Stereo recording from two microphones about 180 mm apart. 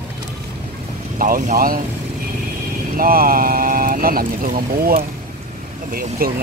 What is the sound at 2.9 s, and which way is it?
Speech, 55° right (ahead or behind).